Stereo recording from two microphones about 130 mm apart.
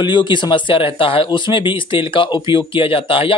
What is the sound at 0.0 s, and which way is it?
Speech, 35° left (ahead or behind).